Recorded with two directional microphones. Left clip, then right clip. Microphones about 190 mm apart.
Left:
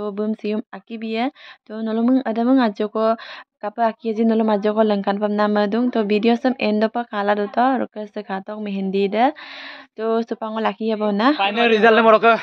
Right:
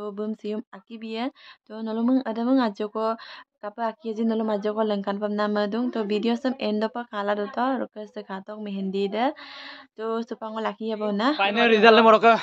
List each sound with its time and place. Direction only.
0.0 s speech: 25° left (ahead or behind)
11.4 s a man's voice: 35° left (ahead or behind)
11.9 s a man's voice: 15° left (ahead or behind)